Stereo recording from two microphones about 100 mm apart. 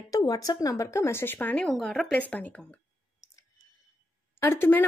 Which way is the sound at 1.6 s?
5° left (ahead or behind).